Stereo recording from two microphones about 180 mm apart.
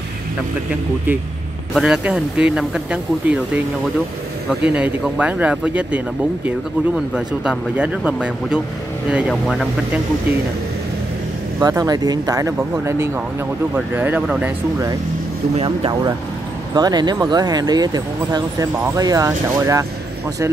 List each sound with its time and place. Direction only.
1.7 s speech: centre (ahead or behind)
11.6 s speech: 20° right (ahead or behind)
15.5 s speech: 30° right (ahead or behind)